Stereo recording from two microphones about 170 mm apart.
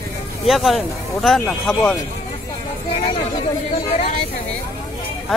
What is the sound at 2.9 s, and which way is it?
Speech, 35° left (ahead or behind).